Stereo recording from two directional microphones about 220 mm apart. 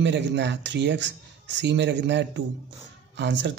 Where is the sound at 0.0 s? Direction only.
55° right (ahead or behind).